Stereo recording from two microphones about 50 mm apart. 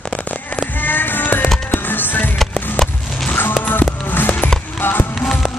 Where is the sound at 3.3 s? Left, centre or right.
Left.